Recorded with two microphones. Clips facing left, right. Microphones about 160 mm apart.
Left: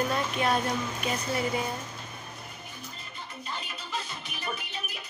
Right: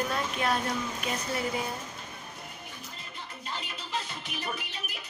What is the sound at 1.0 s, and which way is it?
Speech, centre (ahead or behind).